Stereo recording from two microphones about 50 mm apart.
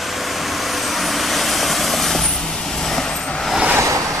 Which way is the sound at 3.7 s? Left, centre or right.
Right.